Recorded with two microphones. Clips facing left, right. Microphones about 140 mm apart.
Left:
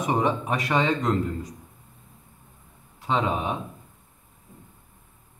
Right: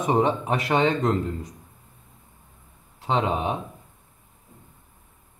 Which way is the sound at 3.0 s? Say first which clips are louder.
Right 1 dB; 25° right (ahead or behind).